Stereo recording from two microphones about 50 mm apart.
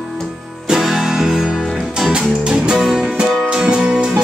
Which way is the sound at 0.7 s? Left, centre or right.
Centre.